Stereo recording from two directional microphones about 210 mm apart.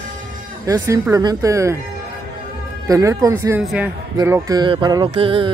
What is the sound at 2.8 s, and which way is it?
A man's voice, 15° right (ahead or behind).